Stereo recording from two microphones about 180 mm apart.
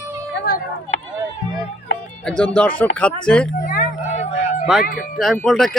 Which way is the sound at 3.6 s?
55° left (ahead or behind).